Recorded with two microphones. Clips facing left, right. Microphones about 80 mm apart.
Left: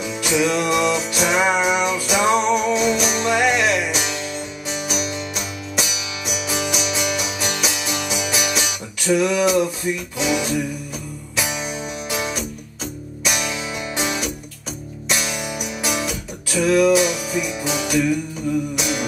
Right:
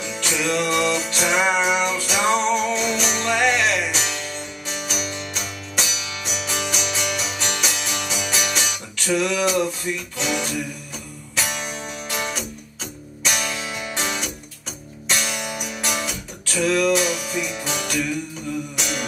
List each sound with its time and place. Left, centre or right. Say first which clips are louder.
0.0 s music: left 5 dB; centre